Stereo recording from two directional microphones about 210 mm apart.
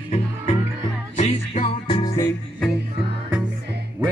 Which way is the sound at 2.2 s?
15° left (ahead or behind).